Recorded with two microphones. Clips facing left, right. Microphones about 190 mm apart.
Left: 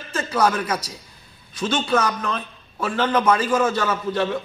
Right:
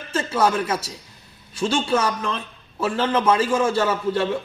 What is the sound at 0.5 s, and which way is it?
Speech, 25° right (ahead or behind).